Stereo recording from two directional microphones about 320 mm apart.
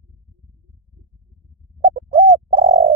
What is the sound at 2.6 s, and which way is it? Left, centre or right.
Bird, right.